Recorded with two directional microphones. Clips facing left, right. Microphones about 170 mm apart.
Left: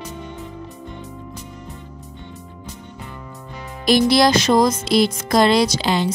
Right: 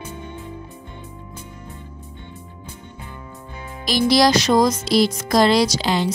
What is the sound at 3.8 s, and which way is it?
Music, 55° left (ahead or behind).